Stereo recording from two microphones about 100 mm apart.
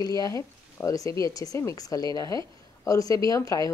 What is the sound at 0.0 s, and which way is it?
A woman's voice, 40° left (ahead or behind).